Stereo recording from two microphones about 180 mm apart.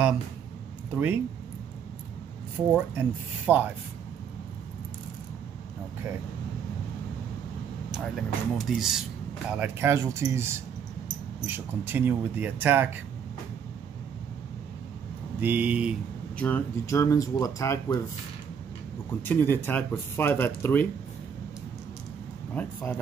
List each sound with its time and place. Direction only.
0.9 s speech: 10° right (ahead or behind)
2.7 s speech: 10° right (ahead or behind)
7.9 s speech: centre (ahead or behind)
15.4 s speech: 10° right (ahead or behind)
16.3 s speech: 10° left (ahead or behind)
19.2 s speech: 10° left (ahead or behind)
22.5 s speech: 10° left (ahead or behind)